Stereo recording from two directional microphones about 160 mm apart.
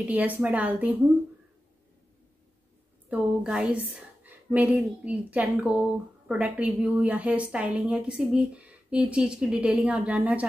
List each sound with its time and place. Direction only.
0.1 s a woman's voice: 10° right (ahead or behind)
3.1 s a woman's voice: 5° right (ahead or behind)